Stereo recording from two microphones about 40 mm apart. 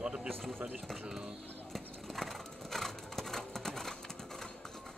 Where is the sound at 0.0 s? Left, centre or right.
Right.